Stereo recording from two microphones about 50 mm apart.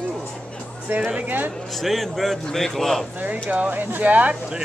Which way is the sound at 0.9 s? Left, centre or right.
Right.